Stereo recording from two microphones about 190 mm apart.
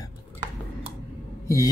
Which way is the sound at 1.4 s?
15° left (ahead or behind).